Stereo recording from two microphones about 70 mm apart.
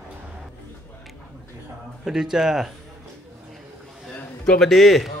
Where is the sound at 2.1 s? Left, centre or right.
Centre.